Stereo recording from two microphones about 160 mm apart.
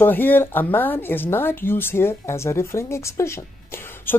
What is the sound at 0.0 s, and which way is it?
A woman's voice, 10° left (ahead or behind).